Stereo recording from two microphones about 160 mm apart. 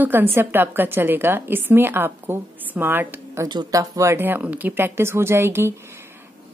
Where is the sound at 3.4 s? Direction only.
25° right (ahead or behind).